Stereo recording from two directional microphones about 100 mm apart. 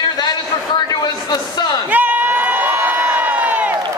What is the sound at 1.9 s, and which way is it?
Crowd, 15° right (ahead or behind).